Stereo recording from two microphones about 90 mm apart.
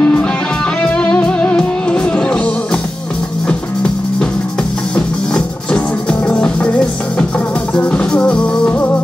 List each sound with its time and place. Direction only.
0.0 s music: 10° left (ahead or behind)